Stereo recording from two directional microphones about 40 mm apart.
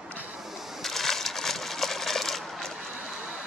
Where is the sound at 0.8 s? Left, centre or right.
Centre.